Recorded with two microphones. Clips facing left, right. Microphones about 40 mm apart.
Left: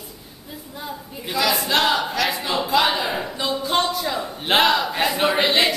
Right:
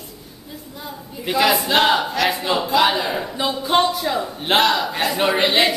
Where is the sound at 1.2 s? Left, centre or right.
Right; by 3.4 s centre.